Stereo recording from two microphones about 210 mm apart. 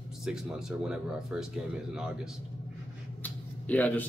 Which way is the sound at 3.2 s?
5° left (ahead or behind).